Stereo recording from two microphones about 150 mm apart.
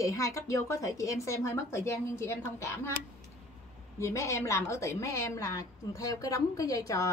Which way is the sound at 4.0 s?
20° left (ahead or behind).